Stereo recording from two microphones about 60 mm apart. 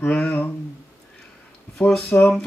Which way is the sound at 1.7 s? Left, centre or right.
Centre.